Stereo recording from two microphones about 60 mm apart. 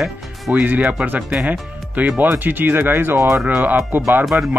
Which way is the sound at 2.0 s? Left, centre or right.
Right.